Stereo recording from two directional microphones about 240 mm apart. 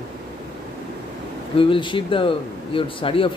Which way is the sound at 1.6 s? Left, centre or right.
Left.